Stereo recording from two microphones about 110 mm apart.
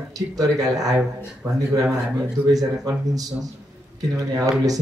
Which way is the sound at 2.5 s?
35° right (ahead or behind).